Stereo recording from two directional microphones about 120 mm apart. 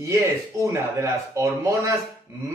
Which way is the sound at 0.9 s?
25° right (ahead or behind).